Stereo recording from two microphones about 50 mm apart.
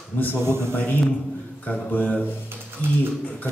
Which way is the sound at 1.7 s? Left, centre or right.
Left.